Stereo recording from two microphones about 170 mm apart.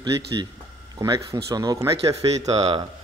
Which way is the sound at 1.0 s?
20° right (ahead or behind).